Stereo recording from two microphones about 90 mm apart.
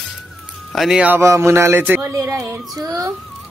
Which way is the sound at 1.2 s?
30° right (ahead or behind).